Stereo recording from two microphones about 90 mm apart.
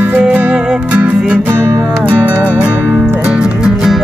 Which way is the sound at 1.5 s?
30° right (ahead or behind).